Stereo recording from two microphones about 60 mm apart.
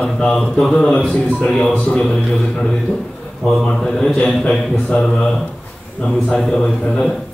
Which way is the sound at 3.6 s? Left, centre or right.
Centre.